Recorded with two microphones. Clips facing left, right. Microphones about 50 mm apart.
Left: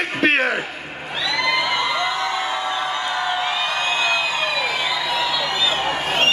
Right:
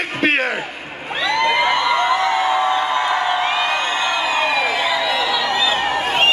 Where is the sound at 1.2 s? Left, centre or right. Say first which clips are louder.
Right 4 dB; right.